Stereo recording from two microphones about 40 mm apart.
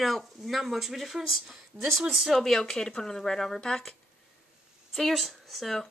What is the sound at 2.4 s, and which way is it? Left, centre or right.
Speech, centre.